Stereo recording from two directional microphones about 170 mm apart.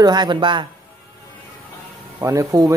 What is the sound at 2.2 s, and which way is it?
Speech, 20° right (ahead or behind).